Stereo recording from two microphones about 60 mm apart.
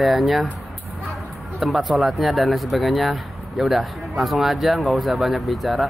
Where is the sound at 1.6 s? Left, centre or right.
Centre.